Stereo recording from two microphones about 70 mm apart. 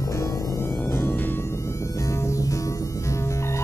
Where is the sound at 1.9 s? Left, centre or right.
Left.